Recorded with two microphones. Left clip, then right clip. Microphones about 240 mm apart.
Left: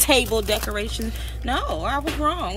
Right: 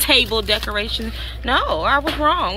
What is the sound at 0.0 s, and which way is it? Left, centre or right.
Speech, centre.